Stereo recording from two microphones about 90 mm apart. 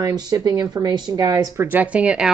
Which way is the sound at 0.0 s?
45° right (ahead or behind).